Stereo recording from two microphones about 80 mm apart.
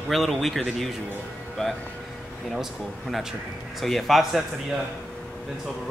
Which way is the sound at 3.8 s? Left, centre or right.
Centre.